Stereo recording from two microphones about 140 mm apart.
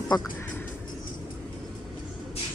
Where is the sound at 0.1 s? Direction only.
25° left (ahead or behind).